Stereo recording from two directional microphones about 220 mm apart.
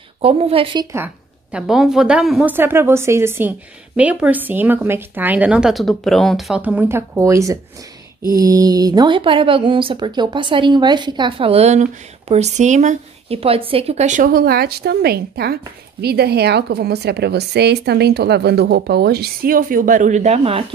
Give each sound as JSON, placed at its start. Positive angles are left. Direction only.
{"t": 0.2, "sound": "a woman's voice", "side_deg": -25}
{"t": 0.9, "sound": "a woman's voice", "side_deg": -5}